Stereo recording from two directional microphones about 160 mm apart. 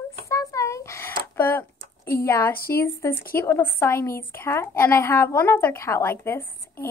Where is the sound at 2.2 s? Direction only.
15° left (ahead or behind).